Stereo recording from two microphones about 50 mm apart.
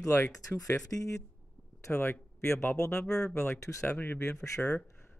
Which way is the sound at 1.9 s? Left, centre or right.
Left.